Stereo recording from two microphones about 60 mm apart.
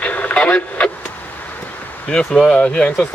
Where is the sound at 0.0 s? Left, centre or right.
Left.